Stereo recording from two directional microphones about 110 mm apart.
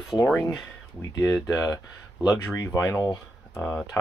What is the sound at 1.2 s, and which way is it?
Speech, 25° left (ahead or behind).